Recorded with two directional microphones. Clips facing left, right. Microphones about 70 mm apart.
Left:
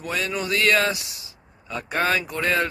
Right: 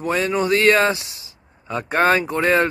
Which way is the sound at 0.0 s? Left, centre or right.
Right.